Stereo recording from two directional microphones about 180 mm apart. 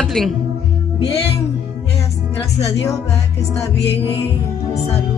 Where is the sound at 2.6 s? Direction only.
15° left (ahead or behind).